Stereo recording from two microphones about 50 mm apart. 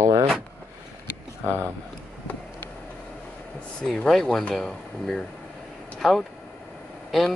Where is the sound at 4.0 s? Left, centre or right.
Centre.